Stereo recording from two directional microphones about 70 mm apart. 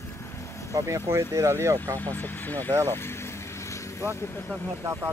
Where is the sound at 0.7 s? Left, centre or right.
Right.